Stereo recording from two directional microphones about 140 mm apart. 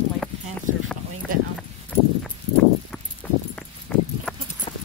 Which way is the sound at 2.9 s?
10° left (ahead or behind).